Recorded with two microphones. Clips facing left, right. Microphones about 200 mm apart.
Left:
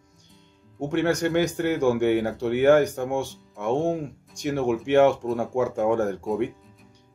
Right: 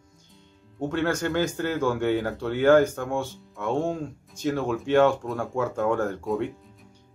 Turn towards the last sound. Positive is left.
turn(degrees=15)  # may be behind; listen again after turning